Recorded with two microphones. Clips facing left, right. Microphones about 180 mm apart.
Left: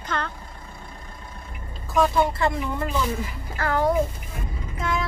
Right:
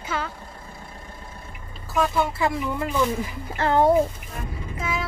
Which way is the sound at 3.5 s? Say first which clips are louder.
Right 4 dB; 25° right (ahead or behind).